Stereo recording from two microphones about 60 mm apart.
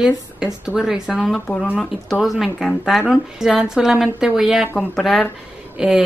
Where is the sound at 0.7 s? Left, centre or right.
Centre.